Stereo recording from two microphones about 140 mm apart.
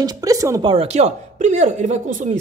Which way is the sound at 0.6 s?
45° right (ahead or behind).